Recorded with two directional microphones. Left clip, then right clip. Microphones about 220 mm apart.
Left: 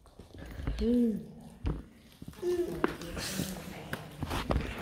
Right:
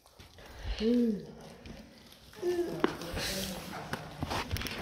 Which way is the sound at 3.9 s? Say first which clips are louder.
Right 1 dB; 5° right (ahead or behind).